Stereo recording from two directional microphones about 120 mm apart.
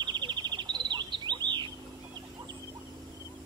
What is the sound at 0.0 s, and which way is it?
Bird, 40° right (ahead or behind).